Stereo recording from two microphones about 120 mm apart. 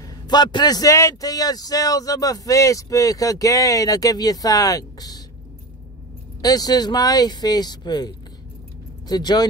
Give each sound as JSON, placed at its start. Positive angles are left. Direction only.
{"t": 0.0, "sound": "a man's voice", "side_deg": 35}
{"t": 6.4, "sound": "a man's voice", "side_deg": 35}
{"t": 9.1, "sound": "a man's voice", "side_deg": 35}